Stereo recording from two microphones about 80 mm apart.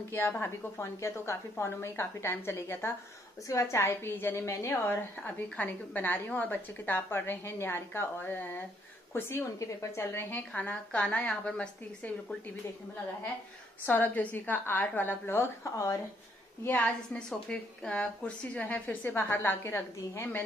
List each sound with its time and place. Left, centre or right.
0.4 s a woman's voice: left
4.8 s a woman's voice: left
10.5 s a woman's voice: centre
13.8 s a woman's voice: left
16.8 s a woman's voice: centre; by 20.4 s left